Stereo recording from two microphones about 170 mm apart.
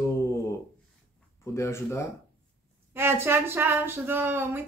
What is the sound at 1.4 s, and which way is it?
Speech, 15° left (ahead or behind).